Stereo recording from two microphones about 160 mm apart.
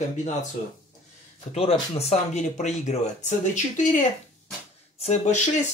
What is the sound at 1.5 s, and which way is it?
Speech, 40° left (ahead or behind).